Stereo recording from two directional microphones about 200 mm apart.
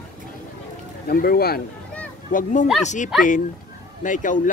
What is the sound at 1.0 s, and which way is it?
Speech, 50° left (ahead or behind).